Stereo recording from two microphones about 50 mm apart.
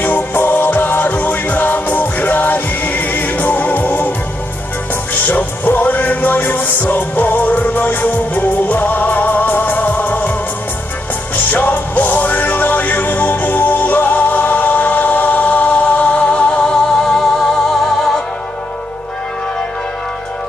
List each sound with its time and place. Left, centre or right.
0.0 s music: left
5.1 s music: left
11.5 s music: left
16.6 s music: centre